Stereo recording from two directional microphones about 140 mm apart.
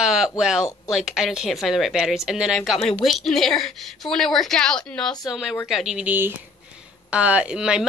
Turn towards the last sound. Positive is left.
turn(degrees=-5)  # may be behind; listen again after turning